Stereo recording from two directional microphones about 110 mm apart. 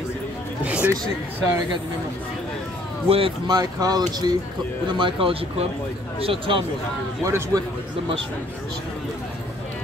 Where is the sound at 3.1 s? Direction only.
60° right (ahead or behind).